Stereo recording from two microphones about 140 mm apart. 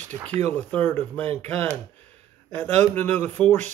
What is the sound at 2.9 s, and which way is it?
Speech, 15° left (ahead or behind).